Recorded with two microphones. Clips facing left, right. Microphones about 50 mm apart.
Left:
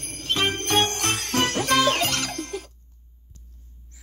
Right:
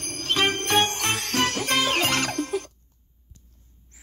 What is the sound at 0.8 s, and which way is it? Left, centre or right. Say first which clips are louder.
Jingle bell: even; right.